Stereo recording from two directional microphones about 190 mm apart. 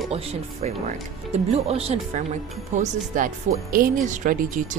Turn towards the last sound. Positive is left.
turn(degrees=-45)  # may be behind; listen again after turning